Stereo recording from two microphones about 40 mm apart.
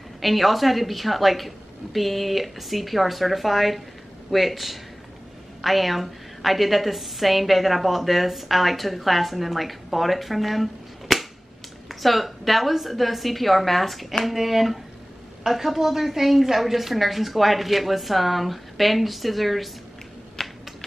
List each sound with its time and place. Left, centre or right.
0.2 s a woman's voice: centre
20.4 s typing: centre